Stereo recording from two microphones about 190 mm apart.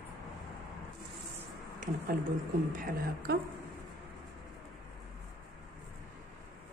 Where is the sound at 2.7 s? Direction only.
50° right (ahead or behind).